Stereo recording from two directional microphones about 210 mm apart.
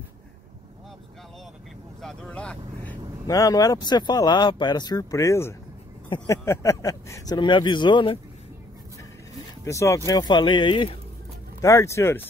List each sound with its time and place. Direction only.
2.0 s vehicle: 5° left (ahead or behind)
3.3 s speech: 15° left (ahead or behind)
9.7 s speech: 15° left (ahead or behind)